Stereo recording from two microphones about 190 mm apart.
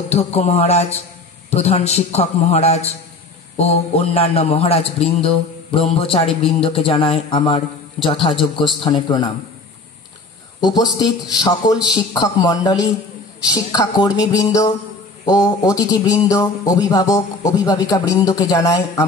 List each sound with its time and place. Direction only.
0.1 s a man's voice: 35° left (ahead or behind)
10.6 s a man's voice: 20° left (ahead or behind)